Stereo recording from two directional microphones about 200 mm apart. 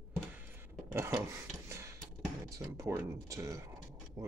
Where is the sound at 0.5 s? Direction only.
10° right (ahead or behind).